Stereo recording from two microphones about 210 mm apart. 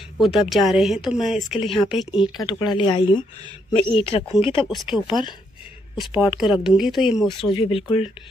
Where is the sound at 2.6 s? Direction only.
20° left (ahead or behind).